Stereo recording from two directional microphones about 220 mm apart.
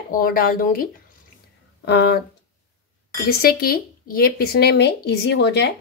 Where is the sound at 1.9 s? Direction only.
45° left (ahead or behind).